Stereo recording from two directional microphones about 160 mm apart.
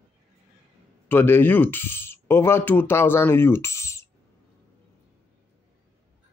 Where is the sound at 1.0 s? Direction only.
15° left (ahead or behind).